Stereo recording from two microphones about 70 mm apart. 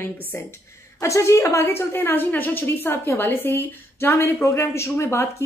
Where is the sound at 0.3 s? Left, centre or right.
Left.